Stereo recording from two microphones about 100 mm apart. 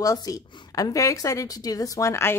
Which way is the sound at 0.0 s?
35° left (ahead or behind).